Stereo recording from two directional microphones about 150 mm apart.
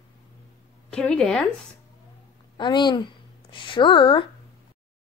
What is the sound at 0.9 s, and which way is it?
Speech, 5° left (ahead or behind).